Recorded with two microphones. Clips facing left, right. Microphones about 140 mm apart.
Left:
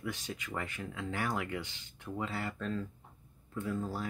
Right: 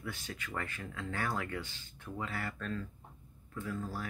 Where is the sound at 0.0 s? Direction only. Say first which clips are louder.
Left 3 dB; 20° left (ahead or behind).